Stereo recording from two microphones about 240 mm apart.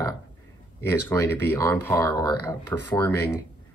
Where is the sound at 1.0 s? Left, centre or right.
Centre.